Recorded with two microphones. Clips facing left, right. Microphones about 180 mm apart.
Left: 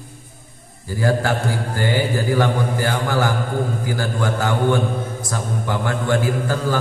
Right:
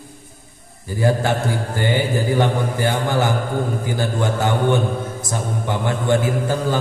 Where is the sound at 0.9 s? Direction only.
20° right (ahead or behind).